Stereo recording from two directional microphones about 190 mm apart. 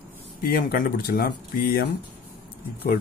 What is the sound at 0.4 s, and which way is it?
Speech, 50° left (ahead or behind).